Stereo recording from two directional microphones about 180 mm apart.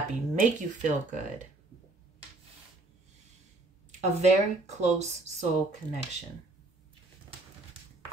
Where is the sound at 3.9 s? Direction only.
40° right (ahead or behind).